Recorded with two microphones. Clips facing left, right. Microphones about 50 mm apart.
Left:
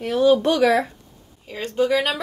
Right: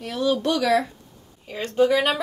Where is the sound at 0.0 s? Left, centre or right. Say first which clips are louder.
Left 6 dB; left.